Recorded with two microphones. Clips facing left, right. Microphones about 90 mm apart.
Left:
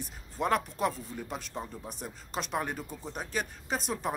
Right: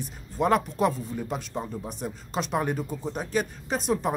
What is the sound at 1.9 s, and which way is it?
Speech, centre (ahead or behind).